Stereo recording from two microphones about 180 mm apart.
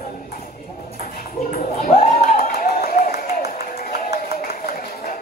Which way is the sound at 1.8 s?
55° left (ahead or behind).